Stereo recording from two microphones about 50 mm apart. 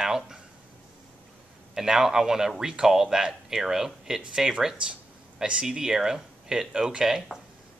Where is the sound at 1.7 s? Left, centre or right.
Centre.